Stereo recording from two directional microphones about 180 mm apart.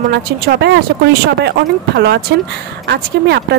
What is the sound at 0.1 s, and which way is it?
Speech, 65° right (ahead or behind).